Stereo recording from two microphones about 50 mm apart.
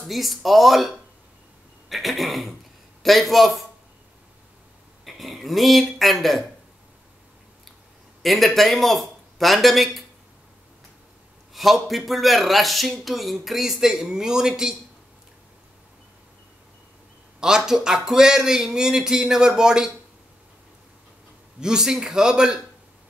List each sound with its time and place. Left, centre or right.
0.1 s speech: centre
5.0 s speech: centre
8.2 s speech: centre
11.5 s speech: centre
17.4 s speech: centre
21.5 s speech: centre